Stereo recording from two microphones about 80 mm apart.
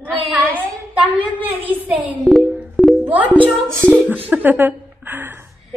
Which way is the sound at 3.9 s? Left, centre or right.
Centre.